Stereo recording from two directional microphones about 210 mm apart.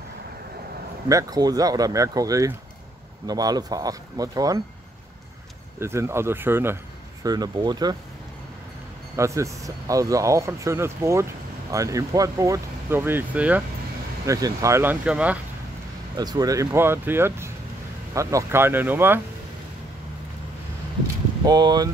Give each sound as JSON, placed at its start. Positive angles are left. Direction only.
{"t": 1.0, "sound": "speech", "side_deg": -15}
{"t": 5.8, "sound": "speech", "side_deg": -10}
{"t": 9.1, "sound": "speech", "side_deg": -15}
{"t": 16.2, "sound": "speech", "side_deg": -20}
{"t": 21.5, "sound": "speech", "side_deg": -20}